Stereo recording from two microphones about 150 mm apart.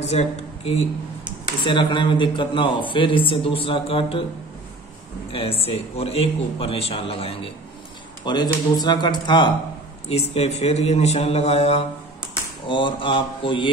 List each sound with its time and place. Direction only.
0.1 s speech: 45° left (ahead or behind)
1.6 s speech: 30° left (ahead or behind)
5.3 s speech: 40° left (ahead or behind)
10.0 s a man's voice: 45° left (ahead or behind)
12.6 s speech: 35° left (ahead or behind)